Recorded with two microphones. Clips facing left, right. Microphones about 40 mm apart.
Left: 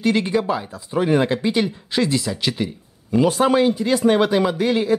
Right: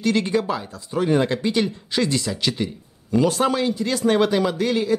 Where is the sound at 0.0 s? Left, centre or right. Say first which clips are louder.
Left 2 dB; centre.